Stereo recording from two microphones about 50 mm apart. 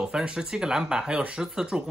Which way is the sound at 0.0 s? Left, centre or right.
Centre.